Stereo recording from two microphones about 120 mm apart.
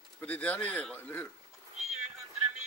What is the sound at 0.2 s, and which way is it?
Speech, 10° left (ahead or behind).